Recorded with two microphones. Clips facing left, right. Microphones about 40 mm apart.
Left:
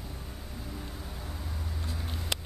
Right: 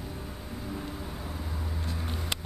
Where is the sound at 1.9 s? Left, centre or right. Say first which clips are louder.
Right 1 dB; centre.